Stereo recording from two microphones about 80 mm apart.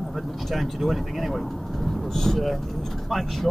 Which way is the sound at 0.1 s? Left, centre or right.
Centre.